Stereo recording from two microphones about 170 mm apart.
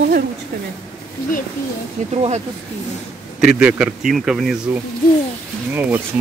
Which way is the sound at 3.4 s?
5° right (ahead or behind).